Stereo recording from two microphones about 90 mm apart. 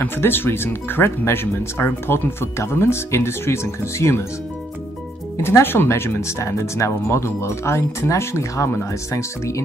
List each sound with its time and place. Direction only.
0.0 s speech: 25° left (ahead or behind)
5.4 s speech: 25° left (ahead or behind)